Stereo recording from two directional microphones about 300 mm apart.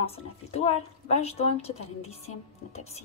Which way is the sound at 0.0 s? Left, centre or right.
Centre.